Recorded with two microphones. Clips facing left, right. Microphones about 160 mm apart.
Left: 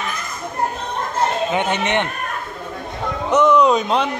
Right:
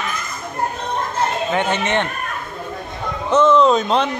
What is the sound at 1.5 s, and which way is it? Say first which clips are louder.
Speech: even; 15° left (ahead or behind).